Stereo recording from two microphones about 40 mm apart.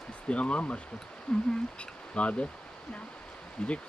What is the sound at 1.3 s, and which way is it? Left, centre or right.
Speech, centre.